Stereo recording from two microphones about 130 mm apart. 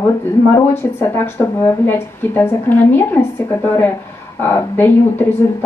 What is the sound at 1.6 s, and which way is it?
A woman's voice, 15° left (ahead or behind).